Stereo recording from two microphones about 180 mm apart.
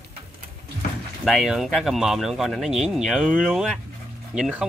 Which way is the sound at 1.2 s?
Centre (ahead or behind).